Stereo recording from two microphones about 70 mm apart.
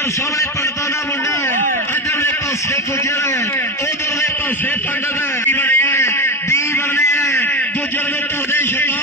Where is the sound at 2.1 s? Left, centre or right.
Left.